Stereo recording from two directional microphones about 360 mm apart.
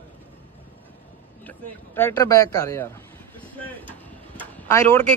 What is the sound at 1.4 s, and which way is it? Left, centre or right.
A man's voice, centre.